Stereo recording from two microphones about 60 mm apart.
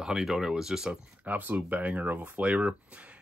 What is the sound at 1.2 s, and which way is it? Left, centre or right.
Speech, right.